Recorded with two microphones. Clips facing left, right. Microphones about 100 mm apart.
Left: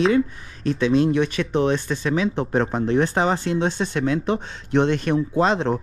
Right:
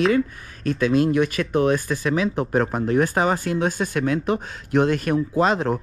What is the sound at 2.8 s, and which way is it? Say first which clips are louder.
Speech: even; 30° left (ahead or behind).